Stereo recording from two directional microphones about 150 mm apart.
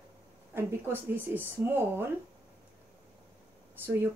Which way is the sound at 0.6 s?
15° right (ahead or behind).